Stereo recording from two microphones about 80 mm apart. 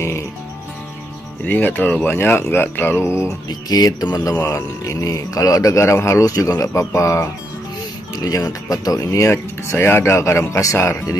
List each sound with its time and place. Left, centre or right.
1.4 s speech: left
3.4 s music: left
4.5 s speech: left
8.2 s speech: left